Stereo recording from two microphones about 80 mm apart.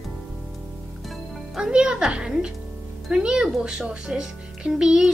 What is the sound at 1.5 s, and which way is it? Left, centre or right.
A child's voice, centre.